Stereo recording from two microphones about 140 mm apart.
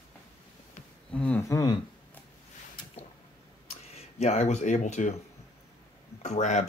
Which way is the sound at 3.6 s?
50° left (ahead or behind).